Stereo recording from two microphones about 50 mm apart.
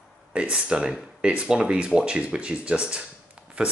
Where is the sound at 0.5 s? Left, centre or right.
Centre.